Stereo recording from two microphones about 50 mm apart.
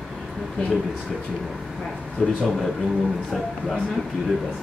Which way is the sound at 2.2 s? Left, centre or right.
Left.